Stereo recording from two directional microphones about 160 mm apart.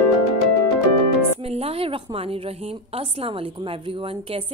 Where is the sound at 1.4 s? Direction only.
40° right (ahead or behind).